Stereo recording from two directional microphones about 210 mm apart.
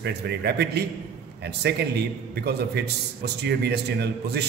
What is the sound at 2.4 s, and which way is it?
A man's voice, 50° right (ahead or behind).